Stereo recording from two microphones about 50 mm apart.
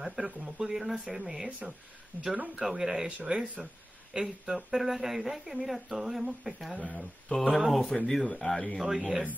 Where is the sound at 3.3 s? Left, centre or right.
Right.